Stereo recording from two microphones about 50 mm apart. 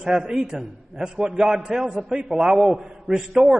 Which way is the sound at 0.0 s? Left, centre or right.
Centre.